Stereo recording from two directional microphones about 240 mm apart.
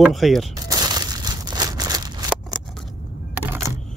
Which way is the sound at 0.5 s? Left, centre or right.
Centre.